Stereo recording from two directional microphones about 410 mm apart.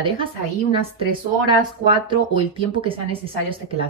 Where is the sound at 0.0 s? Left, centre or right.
Centre.